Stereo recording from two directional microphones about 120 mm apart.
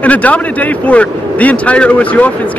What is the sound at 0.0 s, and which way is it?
A man's voice, 10° left (ahead or behind).